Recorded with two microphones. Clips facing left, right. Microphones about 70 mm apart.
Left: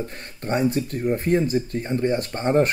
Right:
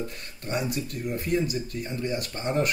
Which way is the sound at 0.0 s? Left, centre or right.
Left.